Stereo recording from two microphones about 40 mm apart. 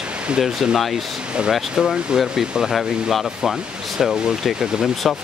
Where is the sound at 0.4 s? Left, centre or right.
Centre.